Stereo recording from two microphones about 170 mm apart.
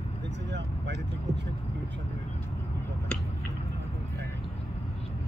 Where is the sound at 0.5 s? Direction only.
90° right.